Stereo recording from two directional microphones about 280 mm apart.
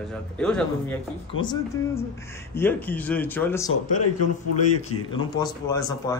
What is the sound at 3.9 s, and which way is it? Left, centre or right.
Speech, left.